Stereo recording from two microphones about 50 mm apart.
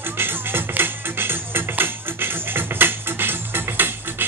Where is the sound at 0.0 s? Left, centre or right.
Right.